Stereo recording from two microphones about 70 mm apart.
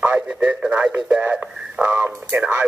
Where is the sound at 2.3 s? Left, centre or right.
Right.